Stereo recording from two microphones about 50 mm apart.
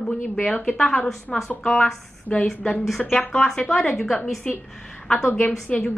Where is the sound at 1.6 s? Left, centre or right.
Centre.